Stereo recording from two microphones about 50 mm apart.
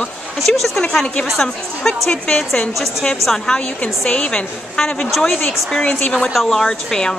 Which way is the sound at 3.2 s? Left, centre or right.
Centre.